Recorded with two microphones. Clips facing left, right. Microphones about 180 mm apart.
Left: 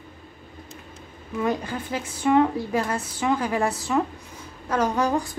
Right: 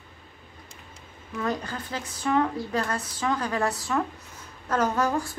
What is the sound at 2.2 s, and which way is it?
A woman's voice, 25° left (ahead or behind).